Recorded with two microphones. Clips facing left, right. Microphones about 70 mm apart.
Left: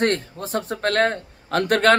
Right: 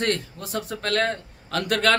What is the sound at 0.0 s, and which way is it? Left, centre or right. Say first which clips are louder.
A man's voice: left 4 dB; left.